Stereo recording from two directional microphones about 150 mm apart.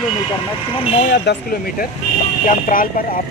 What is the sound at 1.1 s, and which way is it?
Speech, 85° left.